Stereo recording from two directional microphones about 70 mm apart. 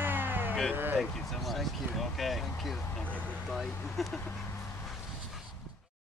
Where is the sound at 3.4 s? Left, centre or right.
Centre.